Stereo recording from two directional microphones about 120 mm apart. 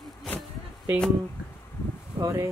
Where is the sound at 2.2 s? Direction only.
25° right (ahead or behind).